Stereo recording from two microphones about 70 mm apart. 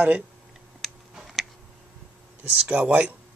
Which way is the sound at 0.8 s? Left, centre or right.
Centre.